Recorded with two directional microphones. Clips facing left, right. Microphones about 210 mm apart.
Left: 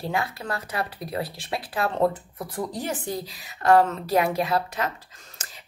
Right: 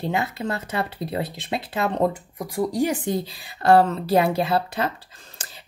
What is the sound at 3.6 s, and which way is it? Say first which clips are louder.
A woman's voice: right 2 dB; 30° right (ahead or behind).